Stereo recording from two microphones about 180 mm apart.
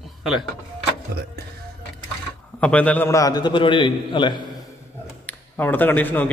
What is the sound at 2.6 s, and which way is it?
A man's voice, 5° left (ahead or behind).